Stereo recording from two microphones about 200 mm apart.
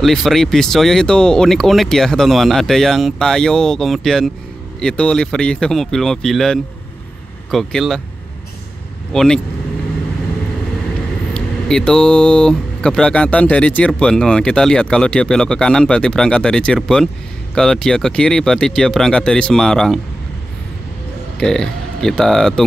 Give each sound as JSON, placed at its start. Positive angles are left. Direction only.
{"t": 0.0, "sound": "speech", "side_deg": 0}
{"t": 9.1, "sound": "speech", "side_deg": 0}
{"t": 11.3, "sound": "speech", "side_deg": 5}
{"t": 21.4, "sound": "speech", "side_deg": 5}